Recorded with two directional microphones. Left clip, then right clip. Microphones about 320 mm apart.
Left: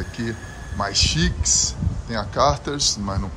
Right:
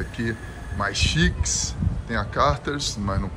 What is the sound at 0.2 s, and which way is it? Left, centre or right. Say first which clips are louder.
Speech: right 1 dB; centre.